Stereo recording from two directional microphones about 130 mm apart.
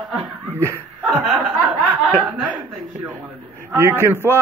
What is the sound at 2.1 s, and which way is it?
Speech, 10° right (ahead or behind).